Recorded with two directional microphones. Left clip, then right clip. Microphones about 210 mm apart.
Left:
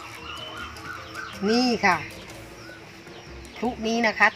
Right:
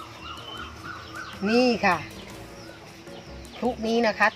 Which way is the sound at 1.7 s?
5° right (ahead or behind).